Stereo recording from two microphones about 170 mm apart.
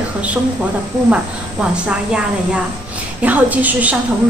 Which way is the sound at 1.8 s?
5° right (ahead or behind).